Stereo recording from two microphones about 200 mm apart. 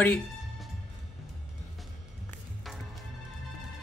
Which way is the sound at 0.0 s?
10° left (ahead or behind).